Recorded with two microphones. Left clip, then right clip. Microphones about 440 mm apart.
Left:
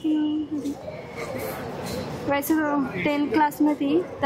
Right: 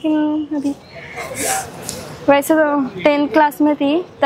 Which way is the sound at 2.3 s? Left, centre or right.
Right.